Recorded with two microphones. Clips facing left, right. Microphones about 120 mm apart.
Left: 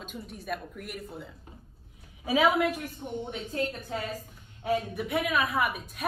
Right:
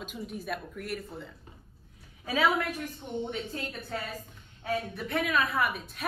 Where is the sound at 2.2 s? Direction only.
15° left (ahead or behind).